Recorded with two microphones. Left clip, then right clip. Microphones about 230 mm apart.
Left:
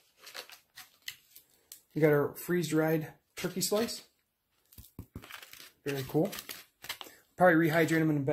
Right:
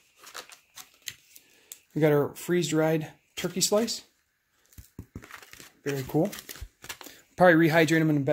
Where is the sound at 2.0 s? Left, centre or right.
Right.